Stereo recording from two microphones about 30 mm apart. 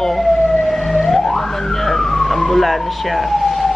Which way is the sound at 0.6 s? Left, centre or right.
Centre.